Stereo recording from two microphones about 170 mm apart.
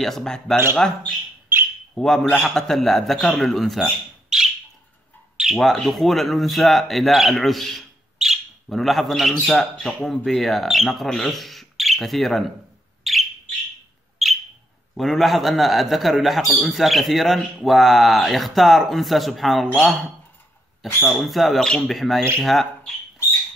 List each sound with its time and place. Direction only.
0.0 s a man's voice: centre (ahead or behind)
13.0 s bird: centre (ahead or behind)
14.2 s a sound: centre (ahead or behind)
15.0 s a man's voice: centre (ahead or behind)